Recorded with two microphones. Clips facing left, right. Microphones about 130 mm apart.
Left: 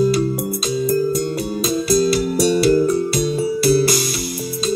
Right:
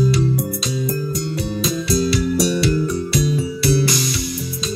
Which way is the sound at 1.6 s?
30° left (ahead or behind).